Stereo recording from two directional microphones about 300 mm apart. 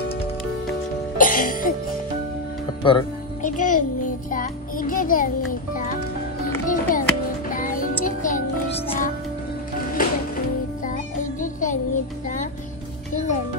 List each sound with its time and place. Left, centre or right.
1.1 s music: left
2.8 s music: centre
4.3 s a child's voice: left
6.7 s music: left
11.4 s music: left